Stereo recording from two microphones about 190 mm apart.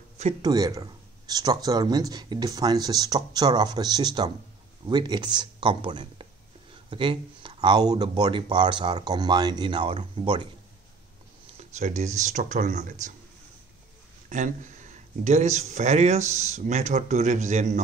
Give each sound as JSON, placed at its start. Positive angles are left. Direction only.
{"t": 0.4, "sound": "speech", "side_deg": -20}
{"t": 11.5, "sound": "a sound", "side_deg": -35}
{"t": 12.2, "sound": "speech", "side_deg": -40}
{"t": 14.3, "sound": "speech", "side_deg": -40}